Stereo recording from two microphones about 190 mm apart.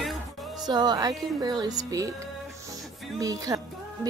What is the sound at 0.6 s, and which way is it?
Music, 20° right (ahead or behind).